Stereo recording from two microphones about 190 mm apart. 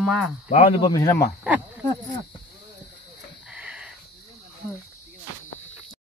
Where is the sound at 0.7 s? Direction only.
20° left (ahead or behind).